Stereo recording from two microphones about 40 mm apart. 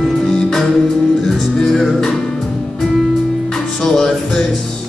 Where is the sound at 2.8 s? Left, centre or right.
Centre.